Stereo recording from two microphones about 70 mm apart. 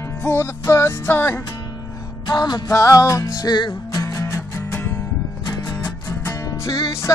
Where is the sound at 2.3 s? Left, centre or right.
Left.